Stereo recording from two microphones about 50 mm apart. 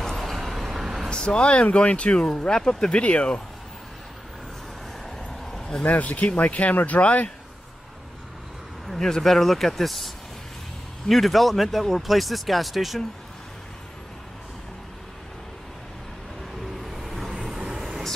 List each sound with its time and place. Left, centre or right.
0.0 s vehicle: centre
1.1 s speech: centre
5.4 s a sound: centre
5.9 s speech: left
8.8 s speech: centre
16.7 s vehicle: centre
17.5 s vehicle: centre